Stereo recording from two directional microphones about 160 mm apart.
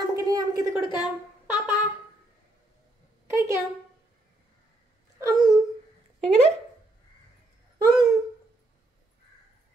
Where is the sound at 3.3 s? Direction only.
20° right (ahead or behind).